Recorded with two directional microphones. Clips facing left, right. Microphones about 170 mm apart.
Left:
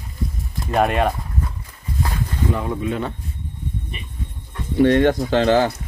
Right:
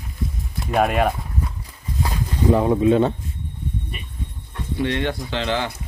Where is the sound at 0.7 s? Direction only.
Centre (ahead or behind).